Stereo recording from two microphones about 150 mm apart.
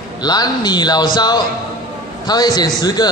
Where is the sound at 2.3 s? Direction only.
25° left (ahead or behind).